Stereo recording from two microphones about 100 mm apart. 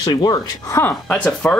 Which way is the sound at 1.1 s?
10° left (ahead or behind).